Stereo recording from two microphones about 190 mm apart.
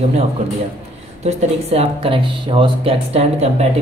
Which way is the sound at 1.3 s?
35° right (ahead or behind).